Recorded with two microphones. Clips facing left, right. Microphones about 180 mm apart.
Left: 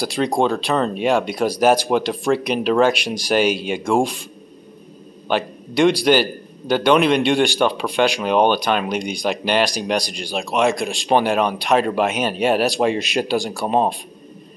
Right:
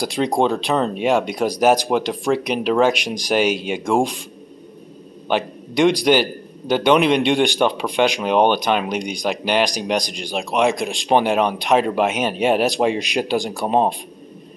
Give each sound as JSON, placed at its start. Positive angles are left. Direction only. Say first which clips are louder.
{"t": 0.0, "sound": "a man's voice", "louder": "even", "side_deg": -20}
{"t": 5.3, "sound": "a man's voice", "louder": "even", "side_deg": -15}